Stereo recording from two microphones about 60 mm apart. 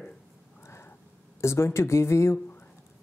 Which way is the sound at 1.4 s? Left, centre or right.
Left.